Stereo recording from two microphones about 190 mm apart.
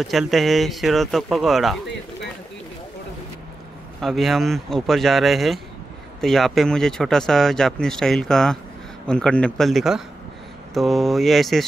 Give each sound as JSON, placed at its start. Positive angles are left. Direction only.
{"t": 0.0, "sound": "speech", "side_deg": 0}
{"t": 4.0, "sound": "speech", "side_deg": 0}